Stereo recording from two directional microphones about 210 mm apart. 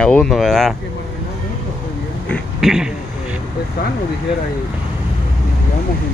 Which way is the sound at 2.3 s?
Centre (ahead or behind).